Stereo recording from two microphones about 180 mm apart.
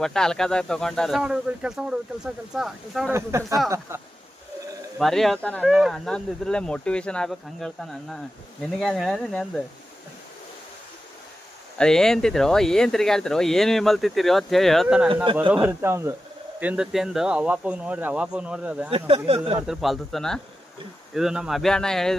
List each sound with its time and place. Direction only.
0.0 s speech: 5° left (ahead or behind)
3.1 s speech: 15° right (ahead or behind)
4.9 s speech: centre (ahead or behind)
11.8 s speech: 5° left (ahead or behind)
18.9 s speech: 30° right (ahead or behind)
19.6 s speech: centre (ahead or behind)